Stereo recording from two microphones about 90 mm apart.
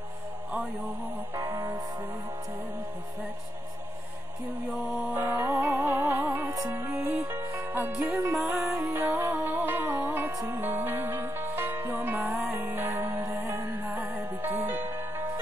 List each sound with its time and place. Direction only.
1.3 s music: 30° right (ahead or behind)
4.9 s music: 20° right (ahead or behind)
8.3 s music: 20° right (ahead or behind)